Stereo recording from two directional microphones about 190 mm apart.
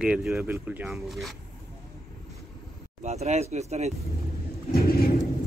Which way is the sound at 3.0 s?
35° right (ahead or behind).